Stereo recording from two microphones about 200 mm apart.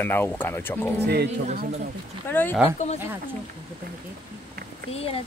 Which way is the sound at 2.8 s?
35° left (ahead or behind).